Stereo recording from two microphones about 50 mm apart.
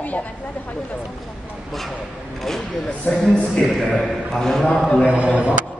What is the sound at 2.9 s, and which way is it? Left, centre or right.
Speech, left.